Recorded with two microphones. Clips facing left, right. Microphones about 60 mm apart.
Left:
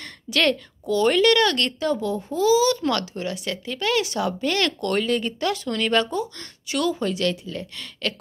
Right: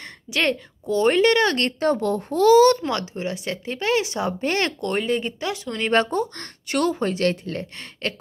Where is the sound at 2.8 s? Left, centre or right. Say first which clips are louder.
Left 1 dB; right.